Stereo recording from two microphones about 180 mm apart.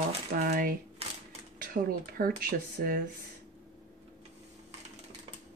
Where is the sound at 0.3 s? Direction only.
55° right (ahead or behind).